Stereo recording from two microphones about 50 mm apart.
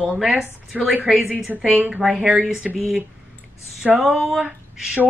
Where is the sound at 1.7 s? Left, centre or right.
Right.